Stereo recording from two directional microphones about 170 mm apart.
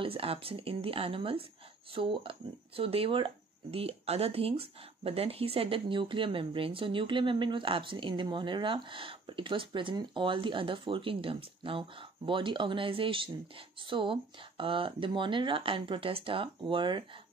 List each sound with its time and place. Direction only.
0.0 s speech: 35° right (ahead or behind)